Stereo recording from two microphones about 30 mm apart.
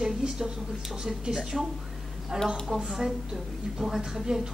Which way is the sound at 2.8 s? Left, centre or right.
Centre.